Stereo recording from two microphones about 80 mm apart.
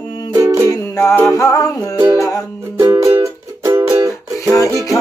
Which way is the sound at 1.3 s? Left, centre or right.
Left.